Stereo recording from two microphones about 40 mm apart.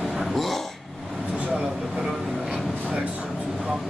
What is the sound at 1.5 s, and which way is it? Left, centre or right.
Vehicle, centre.